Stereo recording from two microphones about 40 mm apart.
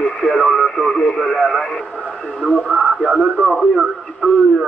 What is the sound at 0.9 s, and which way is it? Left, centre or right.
Radio, left.